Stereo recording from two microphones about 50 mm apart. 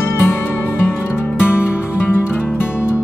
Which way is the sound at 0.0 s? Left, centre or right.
Left.